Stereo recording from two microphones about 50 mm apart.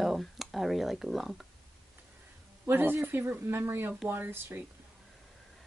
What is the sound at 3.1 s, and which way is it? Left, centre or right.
Speech, right.